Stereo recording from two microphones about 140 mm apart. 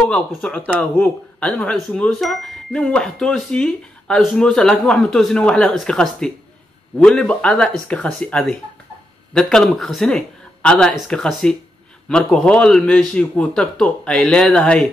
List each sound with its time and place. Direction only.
0.0 s a man's voice: 5° left (ahead or behind)